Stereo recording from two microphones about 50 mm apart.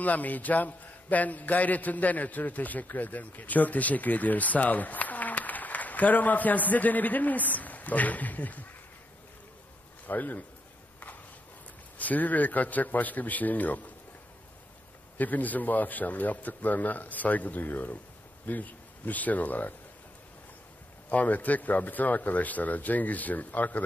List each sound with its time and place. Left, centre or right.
0.0 s a man's voice: left
10.0 s a man's voice: left
12.0 s a man's voice: left
15.1 s a man's voice: left
21.1 s a man's voice: left